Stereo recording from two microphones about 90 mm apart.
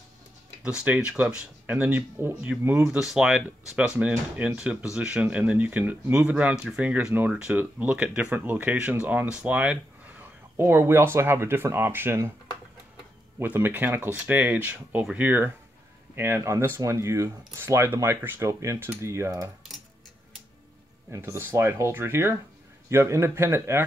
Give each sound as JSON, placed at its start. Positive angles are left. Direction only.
{"t": 0.7, "sound": "speech", "side_deg": -15}
{"t": 3.0, "sound": "speech", "side_deg": -5}
{"t": 13.4, "sound": "speech", "side_deg": -20}
{"t": 21.1, "sound": "speech", "side_deg": -30}